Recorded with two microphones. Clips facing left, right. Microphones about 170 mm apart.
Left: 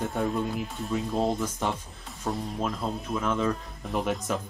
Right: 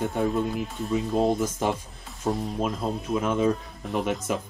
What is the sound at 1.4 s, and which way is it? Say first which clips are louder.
Speech: right 4 dB; 15° right (ahead or behind).